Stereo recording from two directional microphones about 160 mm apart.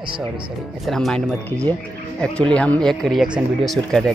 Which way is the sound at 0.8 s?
Centre (ahead or behind).